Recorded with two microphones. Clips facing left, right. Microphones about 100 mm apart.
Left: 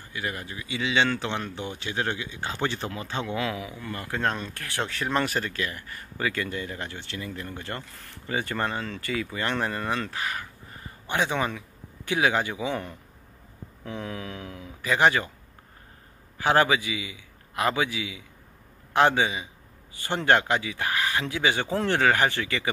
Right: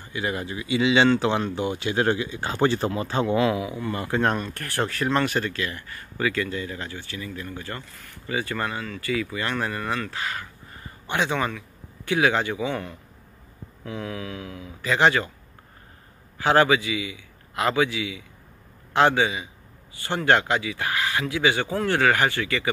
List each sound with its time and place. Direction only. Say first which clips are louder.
0.7 s speech: right 6 dB; 30° right (ahead or behind)
3.5 s speech: right 7 dB; 15° right (ahead or behind); by 5.9 s 10° left (ahead or behind)
6.1 s speech: right 3 dB; 20° left (ahead or behind)
11.2 s a man's voice: right 2 dB; 20° left (ahead or behind)
14.0 s a sound: right 3 dB; 30° left (ahead or behind)
14.8 s speech: right 1 dB; 15° left (ahead or behind)
16.4 s speech: right 3 dB; 20° left (ahead or behind)